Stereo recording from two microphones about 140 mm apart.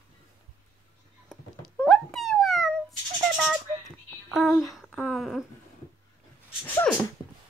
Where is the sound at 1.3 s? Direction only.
5° left (ahead or behind).